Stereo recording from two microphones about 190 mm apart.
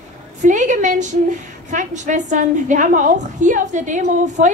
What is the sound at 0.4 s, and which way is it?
A woman's voice, 40° right (ahead or behind).